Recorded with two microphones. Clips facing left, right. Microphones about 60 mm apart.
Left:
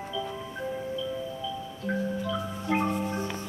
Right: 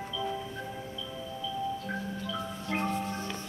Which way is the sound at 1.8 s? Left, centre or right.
Centre.